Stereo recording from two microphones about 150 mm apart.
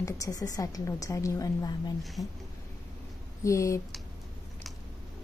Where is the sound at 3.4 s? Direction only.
20° left (ahead or behind).